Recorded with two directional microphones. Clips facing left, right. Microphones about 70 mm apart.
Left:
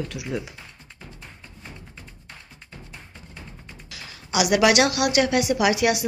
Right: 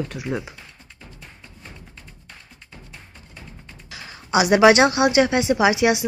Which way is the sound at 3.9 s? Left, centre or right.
Right.